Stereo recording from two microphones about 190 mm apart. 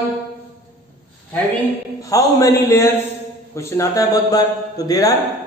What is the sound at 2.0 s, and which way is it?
A man's voice, 15° left (ahead or behind).